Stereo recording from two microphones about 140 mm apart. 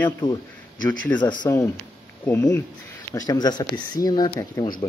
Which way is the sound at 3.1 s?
30° left (ahead or behind).